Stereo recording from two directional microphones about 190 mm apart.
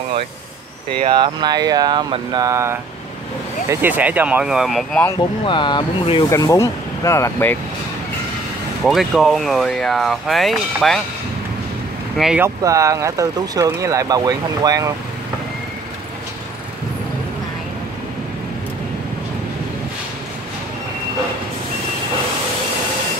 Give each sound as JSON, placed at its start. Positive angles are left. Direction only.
{"t": 1.1, "sound": "speech", "side_deg": -25}
{"t": 5.4, "sound": "speech", "side_deg": 25}
{"t": 8.8, "sound": "speech", "side_deg": 0}
{"t": 12.2, "sound": "speech", "side_deg": -5}
{"t": 12.4, "sound": "speech", "side_deg": -15}